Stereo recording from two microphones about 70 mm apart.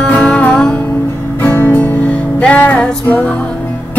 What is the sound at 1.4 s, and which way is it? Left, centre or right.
Music, left.